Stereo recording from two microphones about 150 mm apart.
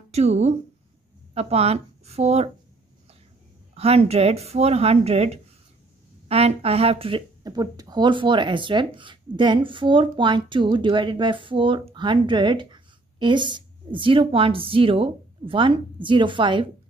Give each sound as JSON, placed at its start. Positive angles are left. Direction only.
{"t": 0.1, "sound": "speech", "side_deg": -45}
{"t": 3.7, "sound": "speech", "side_deg": -40}